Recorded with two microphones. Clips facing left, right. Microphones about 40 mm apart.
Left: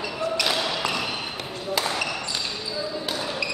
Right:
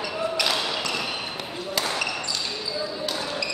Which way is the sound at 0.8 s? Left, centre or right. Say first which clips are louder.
Left 2 dB; centre.